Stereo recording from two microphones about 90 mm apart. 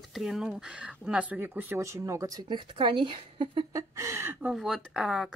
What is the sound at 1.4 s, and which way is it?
Speech, 20° right (ahead or behind).